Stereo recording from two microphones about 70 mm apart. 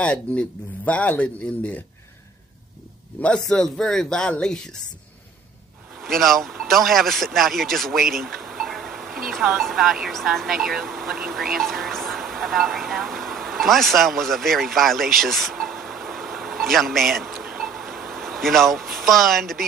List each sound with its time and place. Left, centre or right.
0.0 s speech: centre
3.3 s speech: centre
6.0 s speech: centre
17.6 s a sound: centre